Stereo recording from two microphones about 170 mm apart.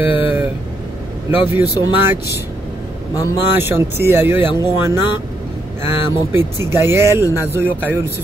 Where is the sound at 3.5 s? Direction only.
15° right (ahead or behind).